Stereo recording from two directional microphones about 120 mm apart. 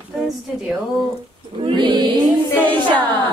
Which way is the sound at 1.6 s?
45° right (ahead or behind).